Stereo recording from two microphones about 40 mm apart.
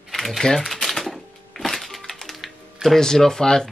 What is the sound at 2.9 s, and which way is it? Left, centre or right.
Speech, centre.